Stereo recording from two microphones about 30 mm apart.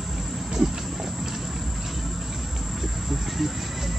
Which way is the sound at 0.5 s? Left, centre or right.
Centre.